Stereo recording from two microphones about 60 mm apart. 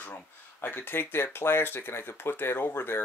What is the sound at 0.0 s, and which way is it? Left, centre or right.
Speech, left.